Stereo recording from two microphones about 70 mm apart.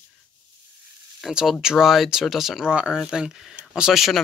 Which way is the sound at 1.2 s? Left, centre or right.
Centre.